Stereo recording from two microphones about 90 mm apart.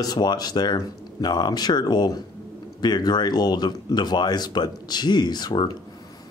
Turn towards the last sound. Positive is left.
turn(degrees=50)  # may be behind; listen again after turning